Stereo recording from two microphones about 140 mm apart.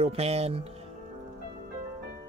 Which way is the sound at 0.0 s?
45° right (ahead or behind).